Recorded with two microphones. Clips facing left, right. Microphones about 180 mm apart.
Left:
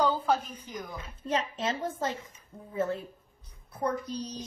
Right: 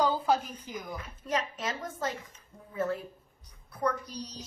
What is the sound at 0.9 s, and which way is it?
A woman's voice, 25° left (ahead or behind).